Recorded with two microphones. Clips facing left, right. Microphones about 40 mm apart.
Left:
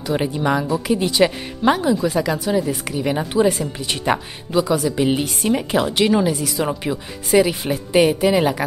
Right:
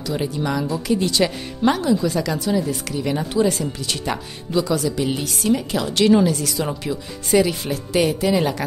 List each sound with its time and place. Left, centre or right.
0.0 s a woman's voice: left